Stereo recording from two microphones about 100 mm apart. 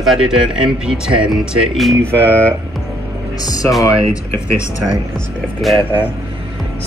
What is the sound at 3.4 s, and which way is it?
Speech, 35° left (ahead or behind).